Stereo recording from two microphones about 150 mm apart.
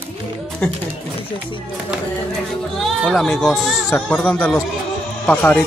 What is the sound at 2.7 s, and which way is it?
Speech, centre (ahead or behind).